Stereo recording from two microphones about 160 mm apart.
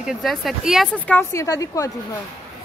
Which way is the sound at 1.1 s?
20° left (ahead or behind).